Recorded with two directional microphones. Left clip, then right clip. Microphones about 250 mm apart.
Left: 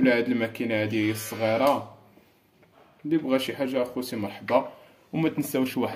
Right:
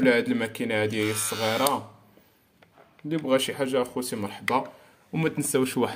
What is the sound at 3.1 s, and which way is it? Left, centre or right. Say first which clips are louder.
A man's voice: right 1 dB; right.